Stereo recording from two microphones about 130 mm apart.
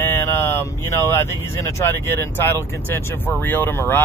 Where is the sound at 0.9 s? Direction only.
20° left (ahead or behind).